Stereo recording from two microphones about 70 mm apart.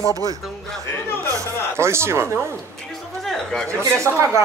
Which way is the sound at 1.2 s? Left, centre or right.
Right.